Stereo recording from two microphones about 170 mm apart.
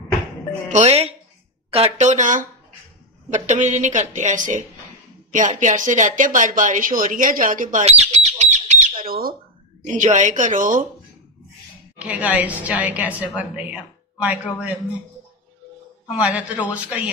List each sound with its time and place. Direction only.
0.7 s speech: 40° right (ahead or behind)
9.0 s speech: 60° right (ahead or behind)
9.8 s speech: 45° right (ahead or behind)
12.0 s a woman's voice: 5° right (ahead or behind)
16.2 s a woman's voice: 10° right (ahead or behind)